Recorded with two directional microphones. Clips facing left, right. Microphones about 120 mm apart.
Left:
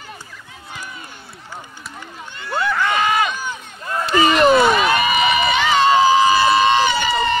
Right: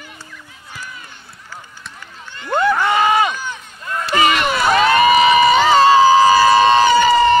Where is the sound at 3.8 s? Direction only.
30° left (ahead or behind).